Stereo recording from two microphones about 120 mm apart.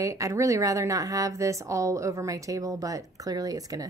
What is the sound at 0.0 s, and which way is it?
Speech, 25° right (ahead or behind).